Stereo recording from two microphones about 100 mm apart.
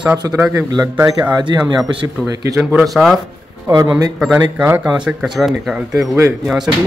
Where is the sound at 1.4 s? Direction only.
50° right (ahead or behind).